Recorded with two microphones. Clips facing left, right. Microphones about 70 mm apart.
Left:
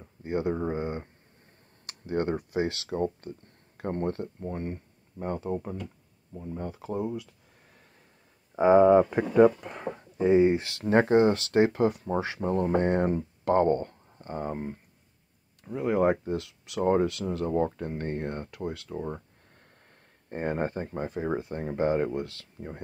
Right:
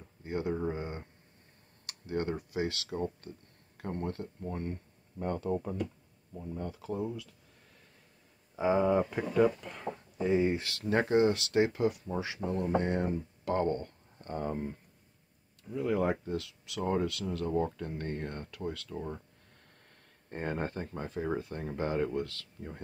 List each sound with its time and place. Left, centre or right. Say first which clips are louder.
0.0 s speech: left 5 dB; left
1.9 s computer keyboard: left 5 dB; left
2.3 s speech: left 5 dB; left
6.4 s speech: left 3 dB; left
8.5 s speech: left 9 dB; left
14.1 s speech: left 1 dB; left
15.6 s speech: left 6 dB; left
20.2 s speech: left 5 dB; left